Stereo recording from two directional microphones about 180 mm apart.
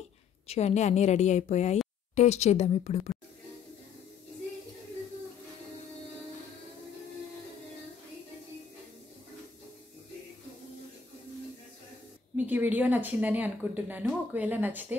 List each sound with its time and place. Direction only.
0.5 s a woman's voice: 35° left (ahead or behind)
12.4 s speech: 10° right (ahead or behind)